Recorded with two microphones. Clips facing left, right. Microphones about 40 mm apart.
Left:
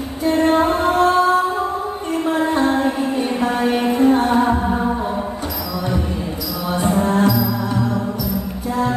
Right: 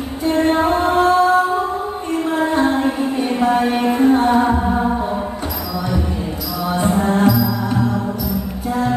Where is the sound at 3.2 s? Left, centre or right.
Centre.